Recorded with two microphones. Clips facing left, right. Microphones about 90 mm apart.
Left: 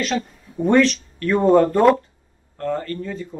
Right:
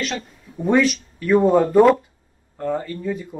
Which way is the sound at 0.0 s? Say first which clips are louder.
Left 4 dB; centre (ahead or behind).